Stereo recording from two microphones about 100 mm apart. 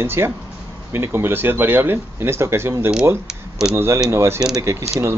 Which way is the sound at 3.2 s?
5° right (ahead or behind).